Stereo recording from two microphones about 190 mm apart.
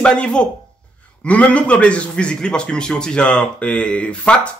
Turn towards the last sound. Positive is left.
turn(degrees=5)  # may be behind; listen again after turning